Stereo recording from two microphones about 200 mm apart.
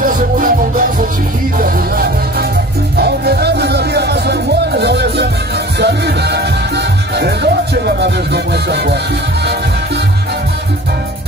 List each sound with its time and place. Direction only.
3.0 s music: 55° right (ahead or behind)